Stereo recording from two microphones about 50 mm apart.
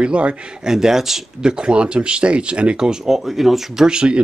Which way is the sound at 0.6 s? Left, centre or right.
Centre.